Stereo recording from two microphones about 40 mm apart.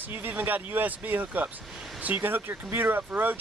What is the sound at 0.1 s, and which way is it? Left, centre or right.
Speech, right.